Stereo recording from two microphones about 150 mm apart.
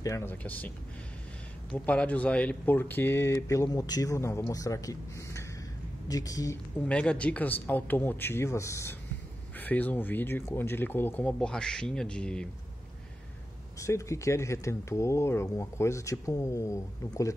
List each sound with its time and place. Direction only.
0.0 s speech: 15° left (ahead or behind)
1.9 s speech: 10° left (ahead or behind)
6.9 s speech: 10° left (ahead or behind)
13.7 s speech: 20° left (ahead or behind)